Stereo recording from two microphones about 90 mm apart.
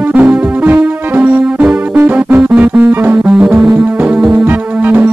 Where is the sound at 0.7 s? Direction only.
20° right (ahead or behind).